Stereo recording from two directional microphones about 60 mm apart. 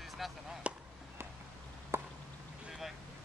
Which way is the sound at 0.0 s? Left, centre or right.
Centre.